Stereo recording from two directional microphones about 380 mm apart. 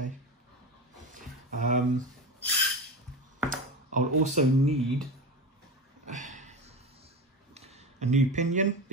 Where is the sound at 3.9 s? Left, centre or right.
Centre.